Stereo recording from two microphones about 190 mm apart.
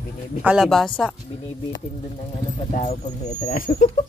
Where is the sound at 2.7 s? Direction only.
40° left (ahead or behind).